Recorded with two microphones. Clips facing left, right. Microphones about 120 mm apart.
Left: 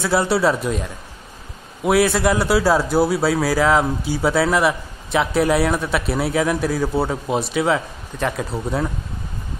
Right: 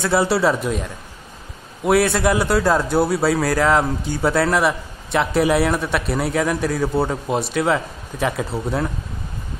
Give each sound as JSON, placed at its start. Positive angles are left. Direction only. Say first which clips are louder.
{"t": 0.0, "sound": "a man's voice", "louder": "even", "side_deg": 0}